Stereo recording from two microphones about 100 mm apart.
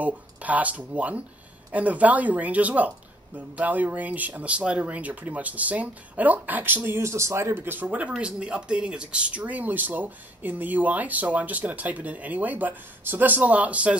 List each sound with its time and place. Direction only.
0.0 s speech: 15° right (ahead or behind)